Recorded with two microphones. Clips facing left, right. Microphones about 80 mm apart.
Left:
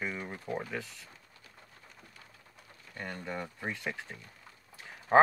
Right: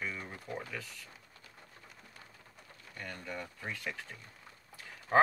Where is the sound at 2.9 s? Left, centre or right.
Left.